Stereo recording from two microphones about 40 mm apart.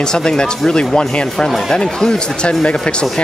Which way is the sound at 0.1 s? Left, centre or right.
Centre.